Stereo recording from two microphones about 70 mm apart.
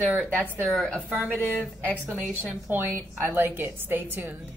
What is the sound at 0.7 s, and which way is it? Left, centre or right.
Speech, centre.